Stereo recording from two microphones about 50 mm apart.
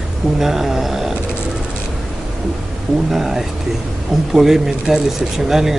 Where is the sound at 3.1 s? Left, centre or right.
Centre.